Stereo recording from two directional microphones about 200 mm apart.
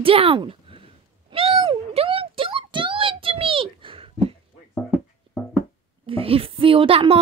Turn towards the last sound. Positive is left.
turn(degrees=-25)  # may be behind; listen again after turning